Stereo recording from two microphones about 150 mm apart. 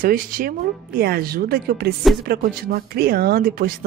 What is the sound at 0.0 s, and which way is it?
Speech, 70° right (ahead or behind).